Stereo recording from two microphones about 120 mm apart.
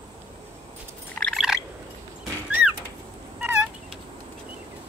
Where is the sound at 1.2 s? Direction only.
10° left (ahead or behind).